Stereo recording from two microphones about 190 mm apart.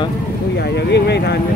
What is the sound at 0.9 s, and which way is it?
Speech, 60° left (ahead or behind).